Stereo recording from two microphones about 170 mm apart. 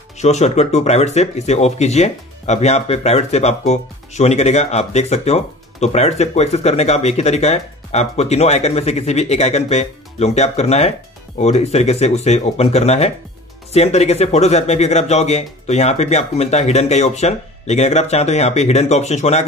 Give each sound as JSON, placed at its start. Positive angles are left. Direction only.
{"t": 0.2, "sound": "speech", "side_deg": 40}